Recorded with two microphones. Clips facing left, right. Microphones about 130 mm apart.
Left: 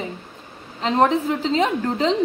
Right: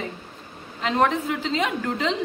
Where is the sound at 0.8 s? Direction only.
30° left (ahead or behind).